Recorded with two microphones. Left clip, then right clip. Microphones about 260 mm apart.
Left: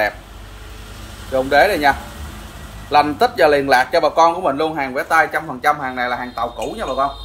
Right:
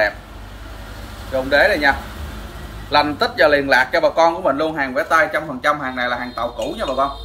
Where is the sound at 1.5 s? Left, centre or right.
Left.